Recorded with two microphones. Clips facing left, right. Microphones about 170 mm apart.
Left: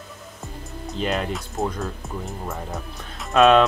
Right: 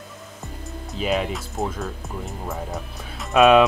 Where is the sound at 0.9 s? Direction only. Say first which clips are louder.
Right 1 dB; 5° right (ahead or behind).